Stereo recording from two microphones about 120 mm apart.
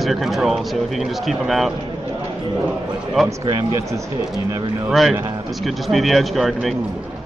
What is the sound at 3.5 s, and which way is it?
Speech, 30° right (ahead or behind).